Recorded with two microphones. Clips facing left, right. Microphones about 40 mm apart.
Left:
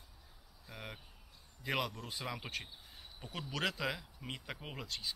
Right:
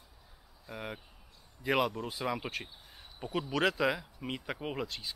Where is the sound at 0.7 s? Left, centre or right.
Centre.